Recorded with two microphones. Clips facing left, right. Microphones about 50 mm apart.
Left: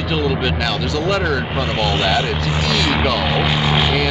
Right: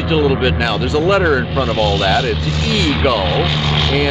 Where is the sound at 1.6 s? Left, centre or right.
Left.